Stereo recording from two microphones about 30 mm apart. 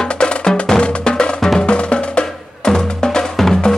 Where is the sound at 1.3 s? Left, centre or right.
Centre.